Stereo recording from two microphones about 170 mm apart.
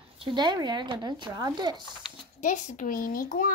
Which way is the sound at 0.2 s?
25° right (ahead or behind).